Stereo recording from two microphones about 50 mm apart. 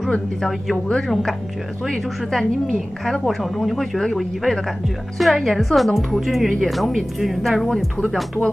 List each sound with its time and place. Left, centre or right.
0.1 s a woman's voice: centre
1.9 s speech: centre